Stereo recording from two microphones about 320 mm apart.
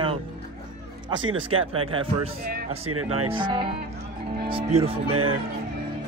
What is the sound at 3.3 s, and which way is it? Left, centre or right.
A man's voice, centre.